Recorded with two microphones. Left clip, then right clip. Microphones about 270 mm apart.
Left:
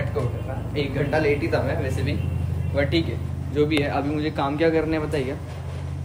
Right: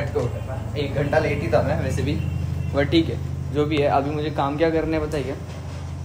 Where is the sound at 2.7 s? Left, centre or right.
Centre.